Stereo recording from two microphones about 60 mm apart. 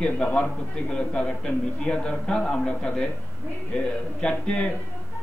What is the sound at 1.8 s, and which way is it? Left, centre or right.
A man's voice, centre.